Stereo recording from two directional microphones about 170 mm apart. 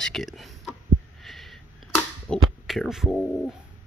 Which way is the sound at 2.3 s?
Centre (ahead or behind).